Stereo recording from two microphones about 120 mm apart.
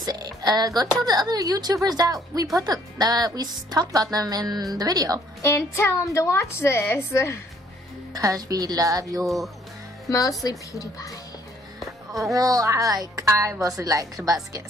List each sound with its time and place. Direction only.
0.0 s music: 35° right (ahead or behind)
1.0 s a woman's voice: 35° right (ahead or behind)
5.4 s a woman's voice: 20° left (ahead or behind)
8.1 s a woman's voice: 30° right (ahead or behind)
10.0 s a woman's voice: 30° left (ahead or behind)
12.4 s speech: 30° right (ahead or behind)